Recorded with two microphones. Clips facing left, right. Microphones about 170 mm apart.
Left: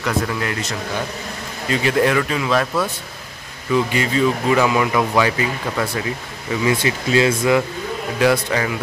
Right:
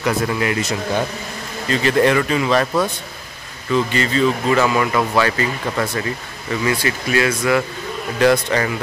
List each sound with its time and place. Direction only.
0.0 s speech: 5° right (ahead or behind)
1.7 s speech: 5° left (ahead or behind)
3.7 s speech: 10° left (ahead or behind)
6.6 s speech: 20° left (ahead or behind)
8.2 s speech: 5° left (ahead or behind)